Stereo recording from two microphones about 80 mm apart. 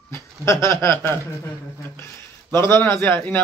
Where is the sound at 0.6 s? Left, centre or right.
Left.